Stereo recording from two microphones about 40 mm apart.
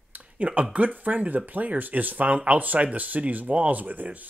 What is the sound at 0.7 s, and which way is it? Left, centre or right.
Speech, right.